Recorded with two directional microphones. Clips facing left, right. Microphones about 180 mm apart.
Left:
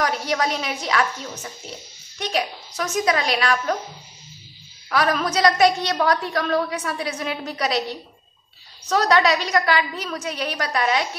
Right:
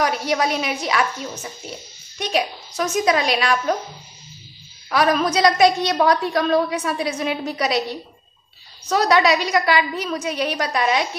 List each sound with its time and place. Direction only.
0.0 s a woman's voice: 10° right (ahead or behind)
4.8 s a woman's voice: 20° right (ahead or behind)